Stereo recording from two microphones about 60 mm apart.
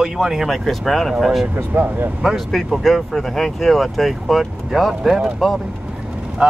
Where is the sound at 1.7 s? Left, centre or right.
Right.